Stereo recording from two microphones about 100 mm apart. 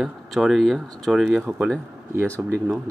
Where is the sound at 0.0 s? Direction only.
Centre (ahead or behind).